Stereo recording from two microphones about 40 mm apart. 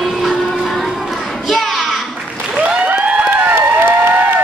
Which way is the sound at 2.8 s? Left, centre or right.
Right.